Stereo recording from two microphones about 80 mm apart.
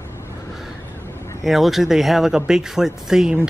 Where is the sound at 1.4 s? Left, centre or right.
Centre.